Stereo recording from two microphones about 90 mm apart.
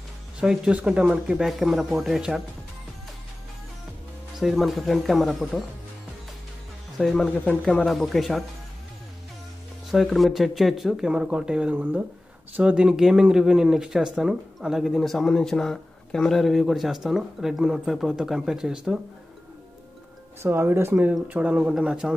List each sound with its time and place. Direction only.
0.4 s speech: 10° right (ahead or behind)
4.4 s speech: centre (ahead or behind)
7.0 s speech: centre (ahead or behind)
9.8 s speech: centre (ahead or behind)
20.4 s speech: 25° right (ahead or behind); by 22.1 s 10° right (ahead or behind)